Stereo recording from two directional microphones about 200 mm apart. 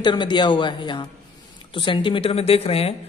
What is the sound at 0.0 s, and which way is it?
A woman's voice, 25° left (ahead or behind).